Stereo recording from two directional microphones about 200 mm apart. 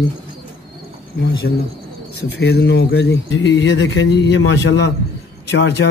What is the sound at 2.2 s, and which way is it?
Speech, 55° left (ahead or behind).